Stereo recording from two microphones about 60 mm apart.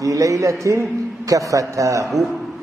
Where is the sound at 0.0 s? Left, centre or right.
Right.